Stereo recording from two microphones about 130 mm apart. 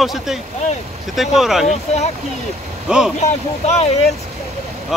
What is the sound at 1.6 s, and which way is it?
Speech, 60° left (ahead or behind).